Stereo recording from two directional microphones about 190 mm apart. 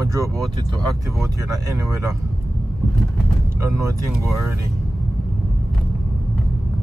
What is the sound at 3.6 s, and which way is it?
Speech, 15° right (ahead or behind).